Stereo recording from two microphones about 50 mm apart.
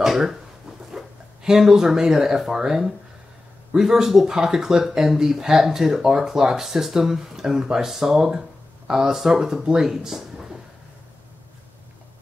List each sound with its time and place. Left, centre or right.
0.0 s speech: centre